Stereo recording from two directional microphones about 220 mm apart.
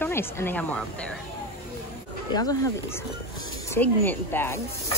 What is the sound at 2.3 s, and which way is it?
Speech, 15° left (ahead or behind).